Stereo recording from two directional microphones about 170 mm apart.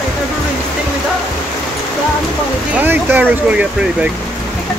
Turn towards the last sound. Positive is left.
turn(degrees=-10)  # may be behind; listen again after turning